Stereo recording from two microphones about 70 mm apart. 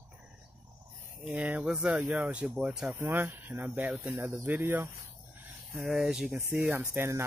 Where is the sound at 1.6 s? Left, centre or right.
Centre.